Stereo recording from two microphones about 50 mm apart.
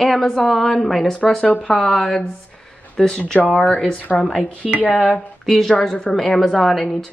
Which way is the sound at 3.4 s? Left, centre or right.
Left.